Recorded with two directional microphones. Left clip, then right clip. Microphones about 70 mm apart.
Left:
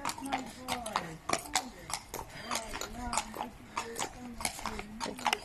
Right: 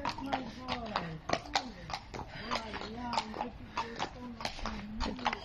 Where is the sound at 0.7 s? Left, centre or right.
Left.